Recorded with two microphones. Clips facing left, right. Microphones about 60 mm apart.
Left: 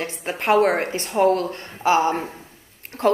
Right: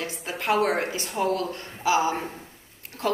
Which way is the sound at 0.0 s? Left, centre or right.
Left.